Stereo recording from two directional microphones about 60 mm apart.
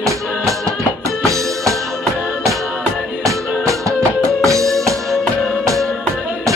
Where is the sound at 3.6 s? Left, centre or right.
Right.